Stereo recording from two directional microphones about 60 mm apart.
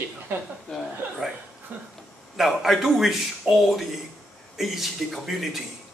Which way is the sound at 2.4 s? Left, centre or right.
Centre.